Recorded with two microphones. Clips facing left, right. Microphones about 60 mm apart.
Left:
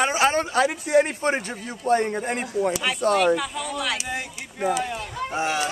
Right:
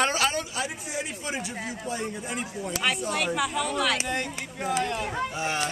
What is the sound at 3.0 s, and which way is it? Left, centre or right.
Speech, left.